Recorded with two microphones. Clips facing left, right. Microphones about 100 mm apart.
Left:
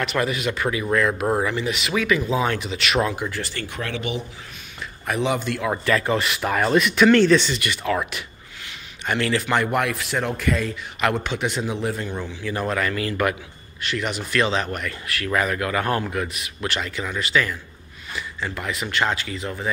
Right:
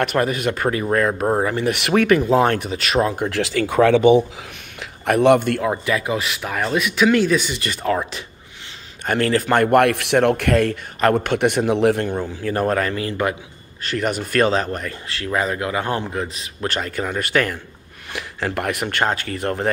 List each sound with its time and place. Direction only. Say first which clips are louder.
0.0 s speech: right 4 dB; 45° right (ahead or behind)
1.6 s speech: right 6 dB; 60° right (ahead or behind); by 3.2 s 35° right (ahead or behind)
3.3 s speech: right 7 dB; 90° right
4.7 s speech: right 7 dB; 65° right (ahead or behind)
5.7 s speech: even; 10° right (ahead or behind)
7.6 s speech: right 2 dB; 35° right (ahead or behind)
9.0 s speech: right 4 dB; 45° right (ahead or behind); by 10.8 s 65° right (ahead or behind)
11.0 s speech: right 6 dB; 45° right (ahead or behind); by 12.1 s 65° right (ahead or behind)
12.2 s speech: right 5 dB; 45° right (ahead or behind); by 13.4 s 25° right (ahead or behind)
13.8 s speech: right 4 dB; 45° right (ahead or behind)
18.1 s speech: right 5 dB; 75° right (ahead or behind)